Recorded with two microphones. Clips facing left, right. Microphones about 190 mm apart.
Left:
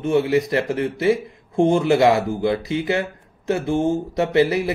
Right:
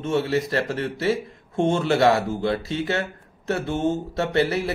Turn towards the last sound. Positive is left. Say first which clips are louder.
# left 4 dB
turn(degrees=20)  # may be behind; listen again after turning